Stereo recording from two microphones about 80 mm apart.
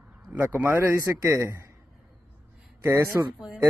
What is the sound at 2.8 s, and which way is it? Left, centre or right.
Speech, right.